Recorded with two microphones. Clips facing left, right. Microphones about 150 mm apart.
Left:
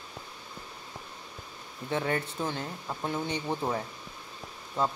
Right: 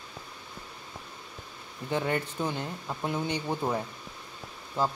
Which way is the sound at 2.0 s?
15° right (ahead or behind).